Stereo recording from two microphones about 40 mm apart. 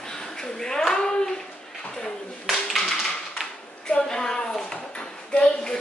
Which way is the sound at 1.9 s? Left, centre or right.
Centre.